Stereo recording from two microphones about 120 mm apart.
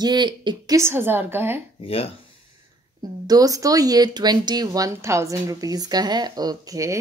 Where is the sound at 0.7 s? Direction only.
20° right (ahead or behind).